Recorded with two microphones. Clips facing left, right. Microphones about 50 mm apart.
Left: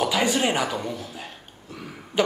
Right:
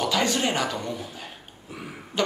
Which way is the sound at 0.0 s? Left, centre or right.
Centre.